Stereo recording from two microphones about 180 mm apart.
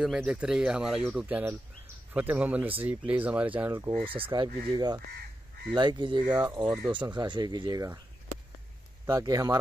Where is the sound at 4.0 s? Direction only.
30° right (ahead or behind).